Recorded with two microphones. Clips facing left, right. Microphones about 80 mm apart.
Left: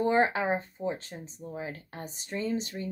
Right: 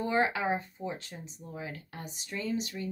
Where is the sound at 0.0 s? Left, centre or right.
Left.